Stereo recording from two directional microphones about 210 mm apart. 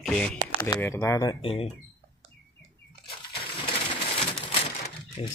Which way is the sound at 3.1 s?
25° left (ahead or behind).